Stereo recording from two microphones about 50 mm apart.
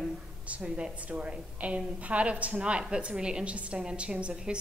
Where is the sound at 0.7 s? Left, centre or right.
Right.